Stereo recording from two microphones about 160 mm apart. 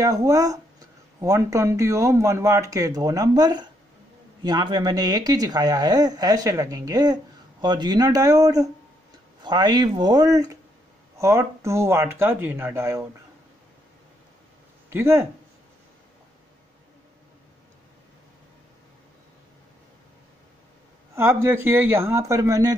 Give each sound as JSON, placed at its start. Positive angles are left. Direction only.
{"t": 0.0, "sound": "speech", "side_deg": -20}
{"t": 14.9, "sound": "speech", "side_deg": -15}
{"t": 21.1, "sound": "speech", "side_deg": -15}